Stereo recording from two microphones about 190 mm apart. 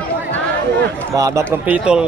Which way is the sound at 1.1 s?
15° right (ahead or behind).